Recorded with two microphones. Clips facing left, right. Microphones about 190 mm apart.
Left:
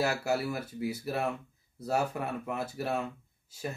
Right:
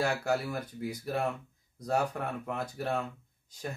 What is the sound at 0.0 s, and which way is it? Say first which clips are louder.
Speech: even; 5° left (ahead or behind).